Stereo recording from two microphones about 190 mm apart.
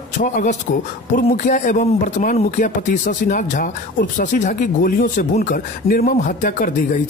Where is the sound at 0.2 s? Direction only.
40° left (ahead or behind).